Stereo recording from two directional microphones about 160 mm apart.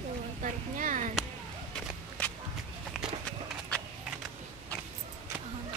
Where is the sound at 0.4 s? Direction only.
55° right (ahead or behind).